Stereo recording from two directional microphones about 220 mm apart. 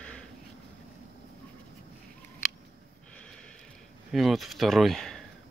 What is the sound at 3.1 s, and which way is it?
Snort, 5° left (ahead or behind).